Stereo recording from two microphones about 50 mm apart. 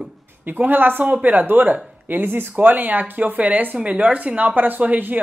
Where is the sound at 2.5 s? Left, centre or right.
Right.